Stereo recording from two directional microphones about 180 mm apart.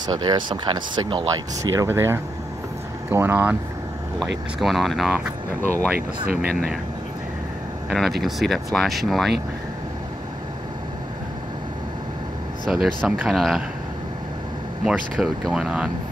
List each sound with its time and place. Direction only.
0.0 s speech: 25° right (ahead or behind)
1.7 s speech: 15° right (ahead or behind)
4.6 s speech: centre (ahead or behind)
5.9 s speech: 55° right (ahead or behind)
7.9 s speech: centre (ahead or behind)
12.6 s speech: centre (ahead or behind)
14.9 s speech: centre (ahead or behind)